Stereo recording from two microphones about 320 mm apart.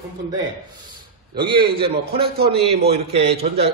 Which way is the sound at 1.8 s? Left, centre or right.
Centre.